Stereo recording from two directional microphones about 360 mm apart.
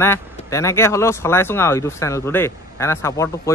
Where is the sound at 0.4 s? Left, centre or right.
Centre.